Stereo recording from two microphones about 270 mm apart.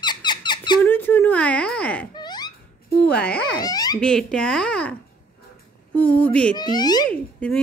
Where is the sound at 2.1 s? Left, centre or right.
Centre.